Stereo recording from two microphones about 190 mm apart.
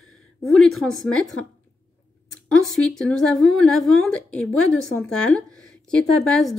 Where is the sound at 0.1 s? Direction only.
Centre (ahead or behind).